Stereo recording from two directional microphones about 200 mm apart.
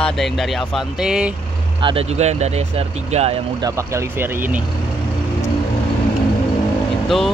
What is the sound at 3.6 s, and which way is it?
Speech, 15° right (ahead or behind).